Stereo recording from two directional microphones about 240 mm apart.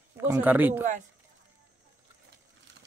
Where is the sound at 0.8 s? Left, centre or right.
Right.